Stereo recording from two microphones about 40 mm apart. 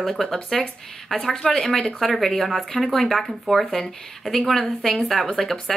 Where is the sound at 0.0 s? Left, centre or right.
Centre.